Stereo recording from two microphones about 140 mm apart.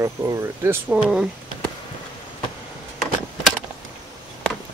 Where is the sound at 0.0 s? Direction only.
20° right (ahead or behind).